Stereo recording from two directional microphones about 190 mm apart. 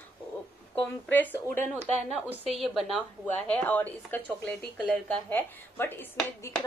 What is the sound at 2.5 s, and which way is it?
Speech, centre (ahead or behind).